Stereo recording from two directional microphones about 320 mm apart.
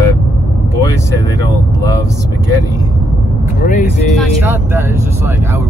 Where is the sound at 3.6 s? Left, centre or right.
Left.